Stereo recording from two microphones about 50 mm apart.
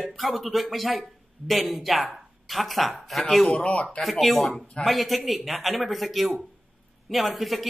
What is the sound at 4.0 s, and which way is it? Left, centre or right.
Speech, centre.